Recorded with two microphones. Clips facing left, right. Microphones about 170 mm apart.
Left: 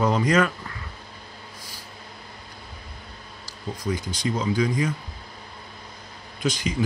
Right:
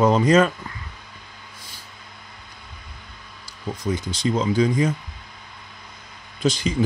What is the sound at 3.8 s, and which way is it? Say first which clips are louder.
Speech: right 3 dB; 25° right (ahead or behind).